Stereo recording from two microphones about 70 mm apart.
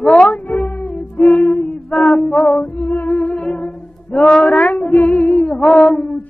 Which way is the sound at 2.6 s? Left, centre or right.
Left.